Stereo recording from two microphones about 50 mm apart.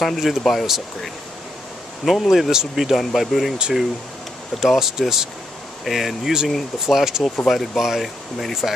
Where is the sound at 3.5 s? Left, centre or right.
Centre.